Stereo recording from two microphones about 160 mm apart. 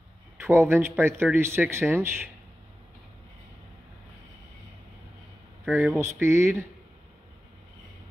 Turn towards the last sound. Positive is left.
turn(degrees=-15)  # may be behind; listen again after turning